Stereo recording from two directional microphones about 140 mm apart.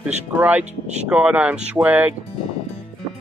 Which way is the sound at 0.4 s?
10° right (ahead or behind).